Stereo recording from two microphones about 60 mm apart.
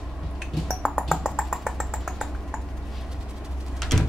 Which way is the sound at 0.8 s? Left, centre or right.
Centre.